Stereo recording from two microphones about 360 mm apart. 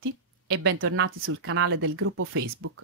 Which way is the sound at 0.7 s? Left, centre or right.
Right.